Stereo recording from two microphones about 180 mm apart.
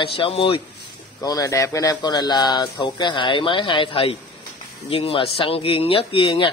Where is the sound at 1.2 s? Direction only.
20° left (ahead or behind).